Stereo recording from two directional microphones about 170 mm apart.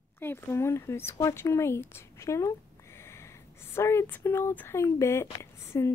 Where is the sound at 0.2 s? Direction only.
15° left (ahead or behind).